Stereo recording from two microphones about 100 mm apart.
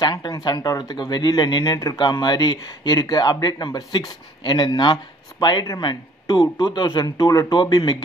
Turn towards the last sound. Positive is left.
turn(degrees=45)  # may be behind; listen again after turning